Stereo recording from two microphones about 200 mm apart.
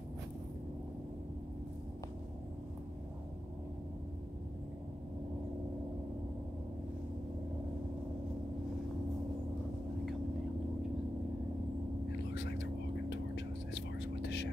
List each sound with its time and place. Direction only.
12.3 s vehicle: 60° left (ahead or behind)
13.1 s whispering: 60° left (ahead or behind)